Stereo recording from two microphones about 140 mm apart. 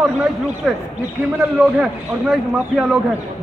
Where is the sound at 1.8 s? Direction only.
5° right (ahead or behind).